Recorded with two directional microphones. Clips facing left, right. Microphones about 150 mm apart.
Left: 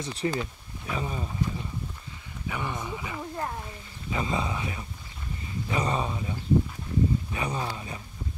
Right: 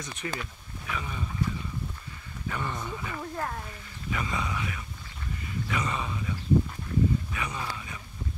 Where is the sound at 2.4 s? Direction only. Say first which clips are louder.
Left 1 dB; 15° left (ahead or behind).